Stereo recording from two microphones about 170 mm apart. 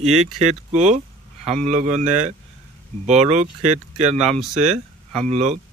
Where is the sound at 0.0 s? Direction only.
40° right (ahead or behind).